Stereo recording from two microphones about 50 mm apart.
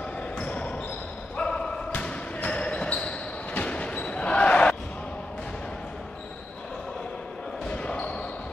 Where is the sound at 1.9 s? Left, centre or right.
Left.